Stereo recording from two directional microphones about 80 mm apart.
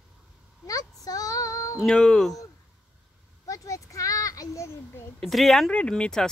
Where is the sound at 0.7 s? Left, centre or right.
Left.